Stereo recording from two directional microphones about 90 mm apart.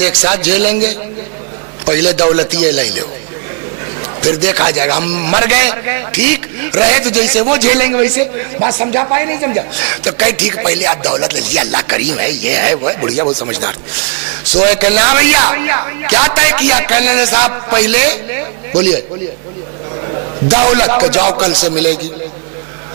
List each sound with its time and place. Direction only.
0.0 s a man's voice: 15° right (ahead or behind)
4.2 s a man's voice: 10° right (ahead or behind)
20.4 s a man's voice: 15° right (ahead or behind)